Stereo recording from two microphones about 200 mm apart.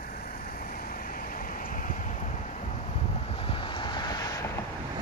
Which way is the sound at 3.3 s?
25° left (ahead or behind).